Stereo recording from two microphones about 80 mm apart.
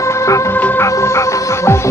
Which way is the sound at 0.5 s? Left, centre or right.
Left.